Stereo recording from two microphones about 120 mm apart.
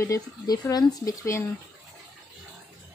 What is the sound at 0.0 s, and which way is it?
Speech, 30° left (ahead or behind).